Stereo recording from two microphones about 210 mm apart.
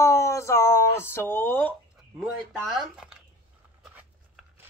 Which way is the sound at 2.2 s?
Centre (ahead or behind).